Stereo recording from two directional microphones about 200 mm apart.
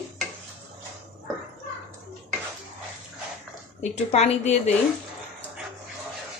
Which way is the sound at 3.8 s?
30° left (ahead or behind).